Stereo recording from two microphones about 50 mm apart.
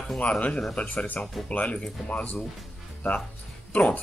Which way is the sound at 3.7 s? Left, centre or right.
Left.